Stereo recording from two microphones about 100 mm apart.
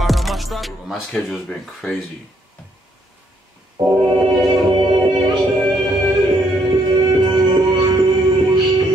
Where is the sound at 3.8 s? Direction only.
45° right (ahead or behind).